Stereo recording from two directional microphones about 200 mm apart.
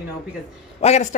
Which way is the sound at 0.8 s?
35° left (ahead or behind).